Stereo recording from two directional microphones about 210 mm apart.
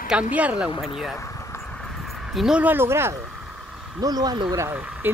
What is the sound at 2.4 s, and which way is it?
Speech, 5° right (ahead or behind).